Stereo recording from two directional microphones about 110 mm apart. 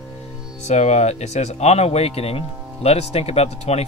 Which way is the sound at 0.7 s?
90° left.